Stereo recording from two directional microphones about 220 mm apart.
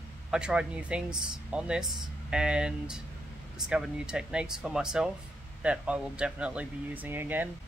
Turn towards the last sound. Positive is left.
turn(degrees=-10)  # may be behind; listen again after turning